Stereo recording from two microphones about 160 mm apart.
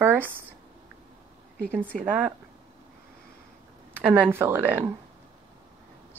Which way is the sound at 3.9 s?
10° right (ahead or behind).